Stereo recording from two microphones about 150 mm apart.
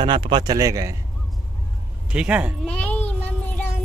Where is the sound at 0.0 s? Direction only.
30° right (ahead or behind).